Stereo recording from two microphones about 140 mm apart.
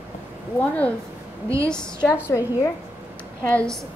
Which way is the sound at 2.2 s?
20° left (ahead or behind).